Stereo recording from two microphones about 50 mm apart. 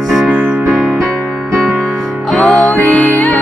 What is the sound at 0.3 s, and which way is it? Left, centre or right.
Music, right.